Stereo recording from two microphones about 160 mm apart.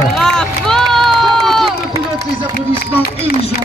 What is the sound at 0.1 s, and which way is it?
Run, 5° left (ahead or behind).